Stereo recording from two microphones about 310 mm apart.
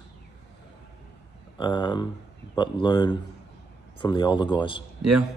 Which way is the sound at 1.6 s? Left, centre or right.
Centre.